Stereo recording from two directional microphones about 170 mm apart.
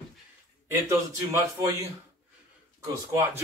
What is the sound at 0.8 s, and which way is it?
Speech, 20° right (ahead or behind).